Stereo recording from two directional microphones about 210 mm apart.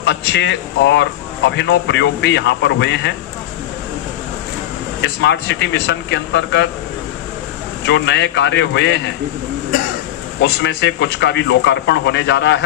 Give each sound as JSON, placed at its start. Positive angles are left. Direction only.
{"t": 0.0, "sound": "speech", "side_deg": 55}
{"t": 5.0, "sound": "speech", "side_deg": 55}
{"t": 7.8, "sound": "speech", "side_deg": 55}
{"t": 10.4, "sound": "speech", "side_deg": 55}